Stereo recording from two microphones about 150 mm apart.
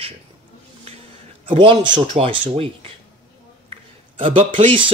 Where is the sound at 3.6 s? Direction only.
35° right (ahead or behind).